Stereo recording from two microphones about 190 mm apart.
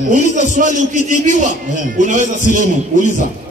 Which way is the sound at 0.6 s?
40° right (ahead or behind).